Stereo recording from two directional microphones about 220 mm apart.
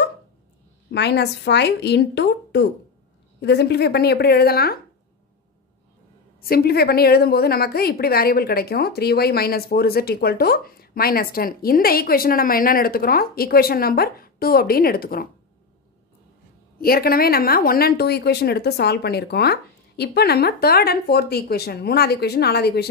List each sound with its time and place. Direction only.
0.9 s a woman's voice: 50° left (ahead or behind)
6.4 s a woman's voice: 45° left (ahead or behind)
16.8 s a woman's voice: 45° left (ahead or behind)